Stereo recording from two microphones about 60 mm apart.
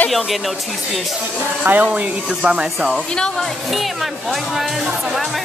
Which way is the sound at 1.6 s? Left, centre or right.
Right.